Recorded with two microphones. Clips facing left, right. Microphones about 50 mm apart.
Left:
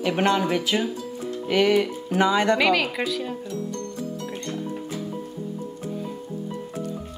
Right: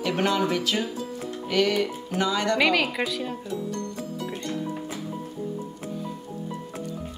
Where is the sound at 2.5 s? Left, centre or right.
Centre.